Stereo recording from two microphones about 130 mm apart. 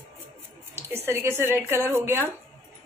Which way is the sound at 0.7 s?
20° right (ahead or behind).